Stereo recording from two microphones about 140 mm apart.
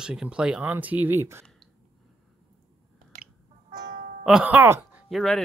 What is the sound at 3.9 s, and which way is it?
Music, 70° right (ahead or behind).